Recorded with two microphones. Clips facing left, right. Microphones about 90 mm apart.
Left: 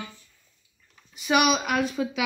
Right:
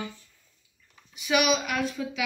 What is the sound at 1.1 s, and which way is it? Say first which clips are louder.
Speech: left 2 dB; 45° left (ahead or behind).